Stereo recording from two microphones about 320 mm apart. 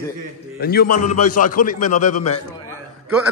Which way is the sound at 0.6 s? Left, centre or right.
Left.